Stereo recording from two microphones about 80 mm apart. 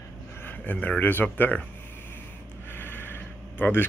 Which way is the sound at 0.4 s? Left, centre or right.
Left.